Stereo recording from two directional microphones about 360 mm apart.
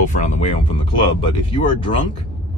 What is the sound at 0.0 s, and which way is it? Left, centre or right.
Speech, centre.